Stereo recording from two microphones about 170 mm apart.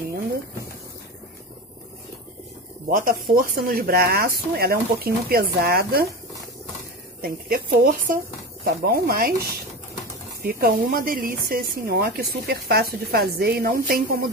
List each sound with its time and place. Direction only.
2.9 s speech: 55° right (ahead or behind)
7.2 s speech: 60° right (ahead or behind)
10.4 s speech: 60° right (ahead or behind)